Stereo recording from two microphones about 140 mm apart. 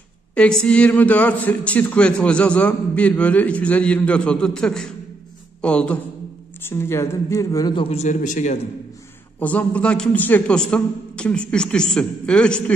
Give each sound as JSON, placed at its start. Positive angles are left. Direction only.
{"t": 0.3, "sound": "a man's voice", "side_deg": 5}
{"t": 6.6, "sound": "speech", "side_deg": 20}
{"t": 7.7, "sound": "speech", "side_deg": 45}
{"t": 9.4, "sound": "a man's voice", "side_deg": 10}